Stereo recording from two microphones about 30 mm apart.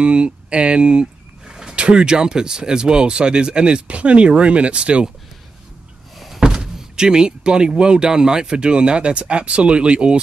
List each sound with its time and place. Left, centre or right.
0.0 s speech: right
1.5 s bird: right
1.8 s speech: right
6.1 s door: centre
6.4 s speech: right